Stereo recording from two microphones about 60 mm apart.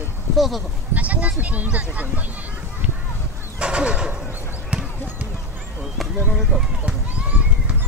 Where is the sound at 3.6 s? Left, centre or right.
Centre.